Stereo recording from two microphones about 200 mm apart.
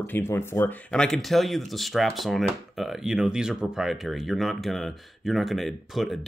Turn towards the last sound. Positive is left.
turn(degrees=0)  # may be behind; listen again after turning